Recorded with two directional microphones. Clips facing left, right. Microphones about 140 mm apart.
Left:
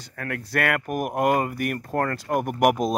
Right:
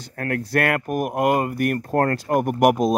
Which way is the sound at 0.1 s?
45° right (ahead or behind).